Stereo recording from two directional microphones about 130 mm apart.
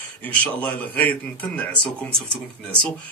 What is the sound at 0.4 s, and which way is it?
Speech, 10° left (ahead or behind).